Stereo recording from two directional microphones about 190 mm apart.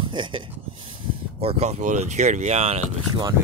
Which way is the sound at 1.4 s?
35° right (ahead or behind).